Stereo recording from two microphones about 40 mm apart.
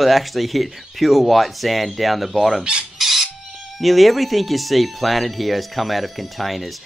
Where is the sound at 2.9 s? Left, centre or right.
Centre.